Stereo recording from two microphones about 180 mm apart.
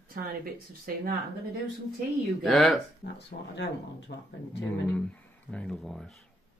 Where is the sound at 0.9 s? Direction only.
55° right (ahead or behind).